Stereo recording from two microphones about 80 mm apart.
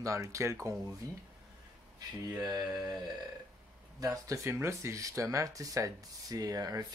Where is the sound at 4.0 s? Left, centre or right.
Right.